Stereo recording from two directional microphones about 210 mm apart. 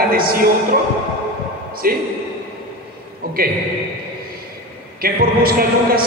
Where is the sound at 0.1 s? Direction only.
45° right (ahead or behind).